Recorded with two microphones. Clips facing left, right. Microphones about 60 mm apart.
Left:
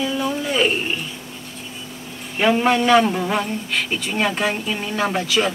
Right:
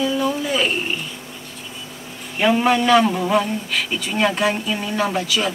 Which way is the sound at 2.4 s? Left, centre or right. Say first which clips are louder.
Even; centre.